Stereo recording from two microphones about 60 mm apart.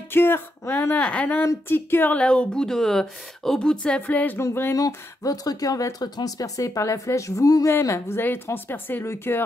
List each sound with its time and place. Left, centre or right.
0.1 s speech: left
0.9 s a woman's voice: left
1.7 s speech: left
2.1 s speech: centre
4.4 s speech: left
4.7 s speech: left
7.6 s speech: left
8.5 s speech: left
9.0 s speech: left